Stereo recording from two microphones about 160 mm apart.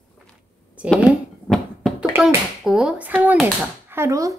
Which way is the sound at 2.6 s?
5° right (ahead or behind).